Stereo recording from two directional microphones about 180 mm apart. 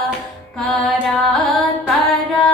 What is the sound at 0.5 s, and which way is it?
Music, centre (ahead or behind).